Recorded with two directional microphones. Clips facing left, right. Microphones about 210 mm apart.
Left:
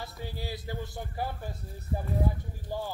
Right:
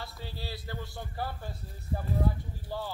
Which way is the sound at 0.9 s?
15° left (ahead or behind).